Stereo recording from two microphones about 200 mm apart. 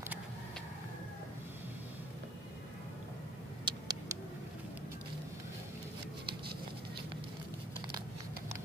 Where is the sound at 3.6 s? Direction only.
20° right (ahead or behind).